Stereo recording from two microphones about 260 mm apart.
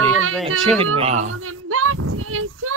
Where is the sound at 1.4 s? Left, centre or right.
Right.